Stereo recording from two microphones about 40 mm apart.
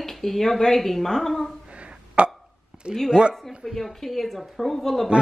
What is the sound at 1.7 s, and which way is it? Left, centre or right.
Hiccup, right.